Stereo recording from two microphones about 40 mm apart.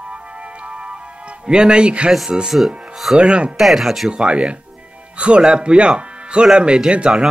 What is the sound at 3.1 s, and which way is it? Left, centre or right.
Speech, right.